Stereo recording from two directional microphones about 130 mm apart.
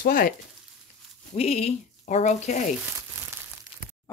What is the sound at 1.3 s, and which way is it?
Speech, 55° left (ahead or behind).